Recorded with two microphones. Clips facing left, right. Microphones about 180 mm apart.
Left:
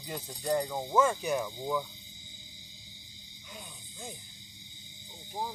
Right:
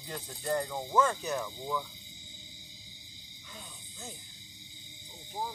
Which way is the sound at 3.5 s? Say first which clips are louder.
Left 2 dB; 15° left (ahead or behind).